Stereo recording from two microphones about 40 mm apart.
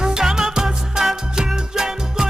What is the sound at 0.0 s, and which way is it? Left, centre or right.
Music, centre.